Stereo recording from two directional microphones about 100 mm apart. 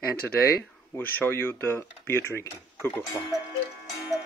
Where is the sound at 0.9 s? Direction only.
20° left (ahead or behind).